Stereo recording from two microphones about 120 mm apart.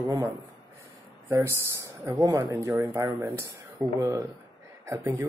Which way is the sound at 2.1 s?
25° right (ahead or behind).